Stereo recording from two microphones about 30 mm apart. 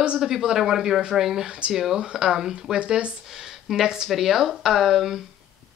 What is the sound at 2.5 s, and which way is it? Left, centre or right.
Speech, right.